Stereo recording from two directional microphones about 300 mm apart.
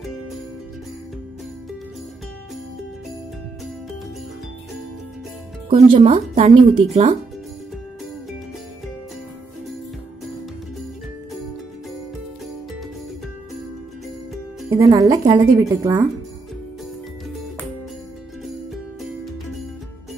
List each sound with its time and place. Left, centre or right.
5.7 s speech: centre
14.7 s speech: centre